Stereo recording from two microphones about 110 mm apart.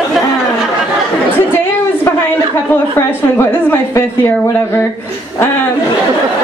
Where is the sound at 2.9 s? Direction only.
20° left (ahead or behind).